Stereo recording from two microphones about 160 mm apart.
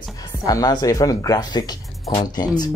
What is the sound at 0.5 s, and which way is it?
Speech, 25° left (ahead or behind).